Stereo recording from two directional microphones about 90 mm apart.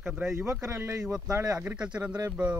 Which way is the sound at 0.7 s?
35° right (ahead or behind).